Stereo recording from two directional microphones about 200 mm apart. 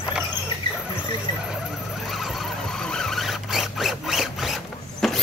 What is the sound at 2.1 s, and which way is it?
Squeal, centre (ahead or behind).